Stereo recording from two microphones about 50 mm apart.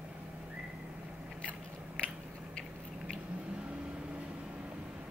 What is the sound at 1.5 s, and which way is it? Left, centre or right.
Biting, left.